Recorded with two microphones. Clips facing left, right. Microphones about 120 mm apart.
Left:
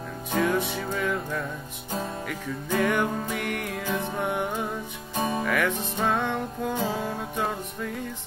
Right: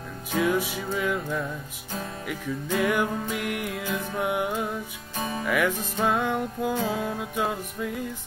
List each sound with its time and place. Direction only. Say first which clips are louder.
0.3 s music: even; 5° right (ahead or behind)
5.1 s music: left 4 dB; 30° left (ahead or behind)
5.4 s music: right 1 dB; 5° right (ahead or behind)